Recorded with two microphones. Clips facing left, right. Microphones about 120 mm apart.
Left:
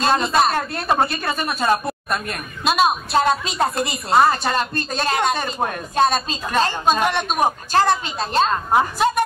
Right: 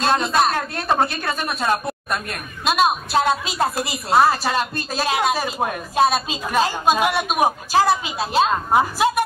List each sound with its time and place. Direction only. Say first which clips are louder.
0.0 s a woman's voice: left 1 dB; centre (ahead or behind)